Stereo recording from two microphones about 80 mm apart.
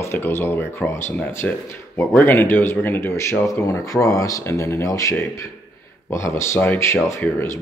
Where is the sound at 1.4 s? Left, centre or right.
Centre.